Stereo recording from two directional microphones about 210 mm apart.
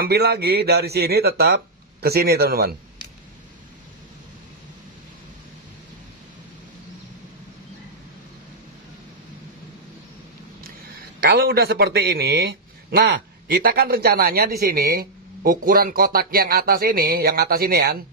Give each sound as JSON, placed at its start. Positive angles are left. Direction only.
{"t": 0.0, "sound": "a man's voice", "side_deg": -50}
{"t": 11.1, "sound": "a man's voice", "side_deg": -45}